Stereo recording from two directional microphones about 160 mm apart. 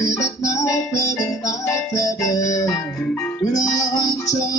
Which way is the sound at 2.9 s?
5° left (ahead or behind).